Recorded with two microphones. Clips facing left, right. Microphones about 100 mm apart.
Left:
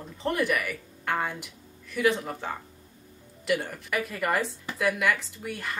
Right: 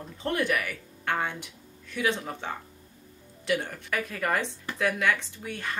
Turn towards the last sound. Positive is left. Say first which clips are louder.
# left 1 dB
turn(degrees=5)  # may be behind; listen again after turning